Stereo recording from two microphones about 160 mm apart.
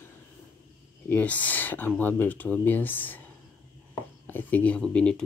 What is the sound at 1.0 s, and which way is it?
Speech, 10° left (ahead or behind).